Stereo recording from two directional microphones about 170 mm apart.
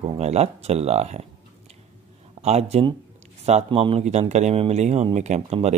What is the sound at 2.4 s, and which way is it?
Speech, 40° right (ahead or behind).